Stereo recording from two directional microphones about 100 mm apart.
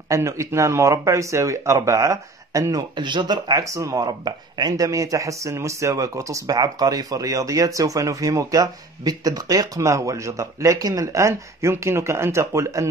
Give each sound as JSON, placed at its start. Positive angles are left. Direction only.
{"t": 0.1, "sound": "speech", "side_deg": -30}